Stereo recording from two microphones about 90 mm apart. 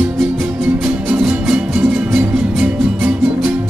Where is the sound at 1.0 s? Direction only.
15° right (ahead or behind).